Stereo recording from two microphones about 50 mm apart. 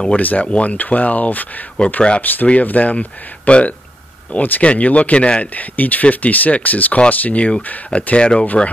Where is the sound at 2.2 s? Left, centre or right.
Left.